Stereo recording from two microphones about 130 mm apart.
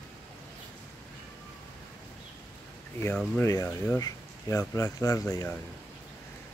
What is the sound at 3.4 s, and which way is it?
Speech, 25° left (ahead or behind).